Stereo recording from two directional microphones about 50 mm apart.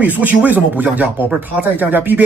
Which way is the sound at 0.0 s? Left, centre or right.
Right.